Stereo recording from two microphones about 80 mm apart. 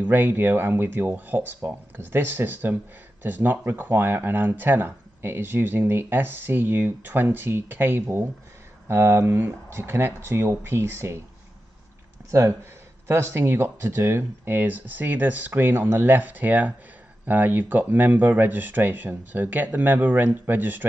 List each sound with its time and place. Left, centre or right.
0.0 s speech: right
12.3 s speech: right